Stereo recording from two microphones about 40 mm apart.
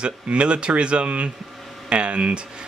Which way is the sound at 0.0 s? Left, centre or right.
Right.